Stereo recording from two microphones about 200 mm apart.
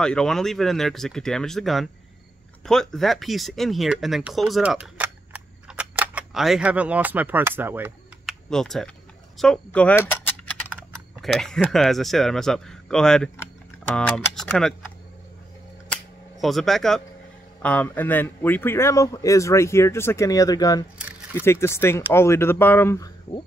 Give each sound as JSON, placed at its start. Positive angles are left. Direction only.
{"t": 0.0, "sound": "speech", "side_deg": 5}
{"t": 8.3, "sound": "speech", "side_deg": 0}
{"t": 15.9, "sound": "camera", "side_deg": 0}
{"t": 17.6, "sound": "speech", "side_deg": 10}